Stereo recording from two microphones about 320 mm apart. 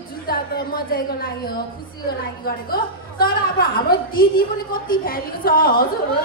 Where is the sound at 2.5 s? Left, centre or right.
Left.